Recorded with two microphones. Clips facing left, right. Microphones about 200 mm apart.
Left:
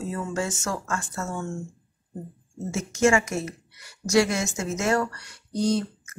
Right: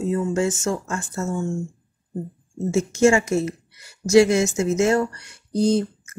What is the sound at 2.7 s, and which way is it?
Speech, 30° right (ahead or behind).